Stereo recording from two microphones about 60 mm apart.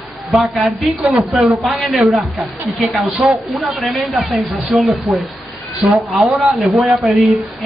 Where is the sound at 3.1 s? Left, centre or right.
Right.